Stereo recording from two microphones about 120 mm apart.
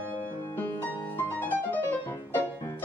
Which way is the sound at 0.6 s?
15° left (ahead or behind).